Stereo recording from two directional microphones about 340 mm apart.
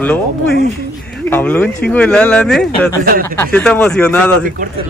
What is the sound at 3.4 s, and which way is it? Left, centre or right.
Speech, centre.